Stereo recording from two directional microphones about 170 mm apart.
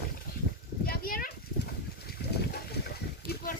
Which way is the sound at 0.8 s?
60° left (ahead or behind).